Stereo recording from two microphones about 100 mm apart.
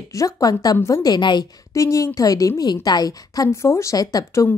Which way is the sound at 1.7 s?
30° left (ahead or behind).